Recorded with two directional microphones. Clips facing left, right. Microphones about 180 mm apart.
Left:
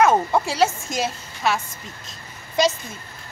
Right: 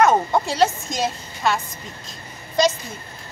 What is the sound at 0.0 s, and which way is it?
A woman's voice, 5° left (ahead or behind).